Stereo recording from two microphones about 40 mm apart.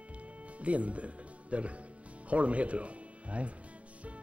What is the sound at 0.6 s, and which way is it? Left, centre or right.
Speech, right.